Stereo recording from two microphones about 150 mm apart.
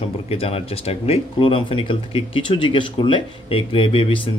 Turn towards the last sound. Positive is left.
turn(degrees=35)  # may be behind; listen again after turning